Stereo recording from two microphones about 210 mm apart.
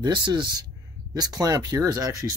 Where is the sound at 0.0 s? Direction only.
20° right (ahead or behind).